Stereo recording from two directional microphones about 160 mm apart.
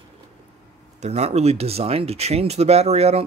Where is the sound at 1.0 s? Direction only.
45° right (ahead or behind).